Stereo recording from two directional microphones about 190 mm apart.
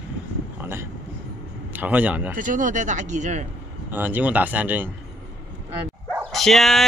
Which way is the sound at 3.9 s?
10° right (ahead or behind).